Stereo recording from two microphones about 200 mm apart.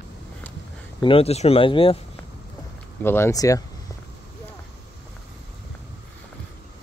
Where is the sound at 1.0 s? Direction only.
30° left (ahead or behind).